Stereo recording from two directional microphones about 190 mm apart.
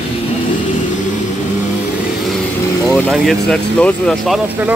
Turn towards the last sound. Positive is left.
turn(degrees=5)  # may be behind; listen again after turning